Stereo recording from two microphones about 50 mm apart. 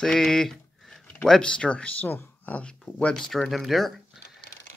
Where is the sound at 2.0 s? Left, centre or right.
Left.